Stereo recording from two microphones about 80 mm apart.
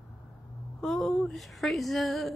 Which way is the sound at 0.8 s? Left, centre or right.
Centre.